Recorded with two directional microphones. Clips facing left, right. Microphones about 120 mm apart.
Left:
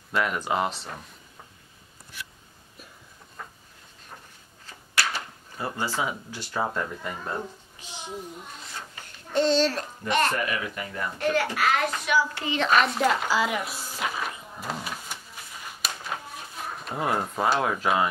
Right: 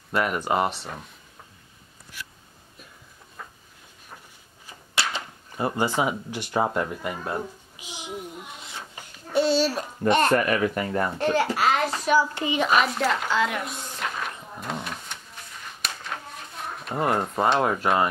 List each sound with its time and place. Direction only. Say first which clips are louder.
0.1 s speech: right 2 dB; 10° right (ahead or behind)
3.4 s a sound: even; centre (ahead or behind)
4.6 s drawer open or close: even; 20° right (ahead or behind)
9.3 s a child's voice: right 1 dB; 10° right (ahead or behind)
10.3 s speech: right 8 dB; 50° right (ahead or behind)
11.1 s a child's voice: left 2 dB; 30° right (ahead or behind)
12.2 s a sound: right 2 dB; 20° right (ahead or behind); by 16.2 s 5° left (ahead or behind)
16.6 s speech: right 3 dB; centre (ahead or behind)